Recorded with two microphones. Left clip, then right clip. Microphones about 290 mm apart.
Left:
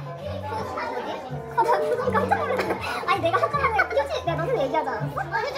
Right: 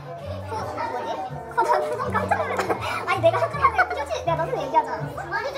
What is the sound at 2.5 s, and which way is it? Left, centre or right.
Music, right.